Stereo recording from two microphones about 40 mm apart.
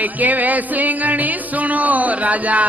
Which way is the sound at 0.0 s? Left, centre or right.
Right.